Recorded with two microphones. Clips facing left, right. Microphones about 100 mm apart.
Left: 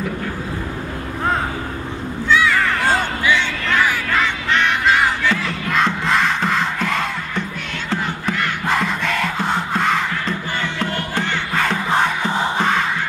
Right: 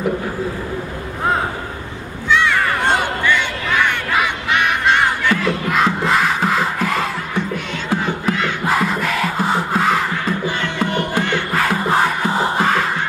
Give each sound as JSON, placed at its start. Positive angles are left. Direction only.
{"t": 2.3, "sound": "a sound", "side_deg": 0}
{"t": 3.3, "sound": "a sound", "side_deg": -10}
{"t": 4.1, "sound": "honk", "side_deg": -10}
{"t": 4.8, "sound": "battle cry", "side_deg": 0}
{"t": 7.9, "sound": "crowd", "side_deg": -15}
{"t": 8.6, "sound": "music", "side_deg": -5}